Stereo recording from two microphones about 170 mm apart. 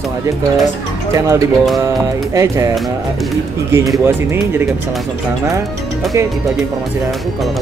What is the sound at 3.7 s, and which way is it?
Speech, 20° right (ahead or behind).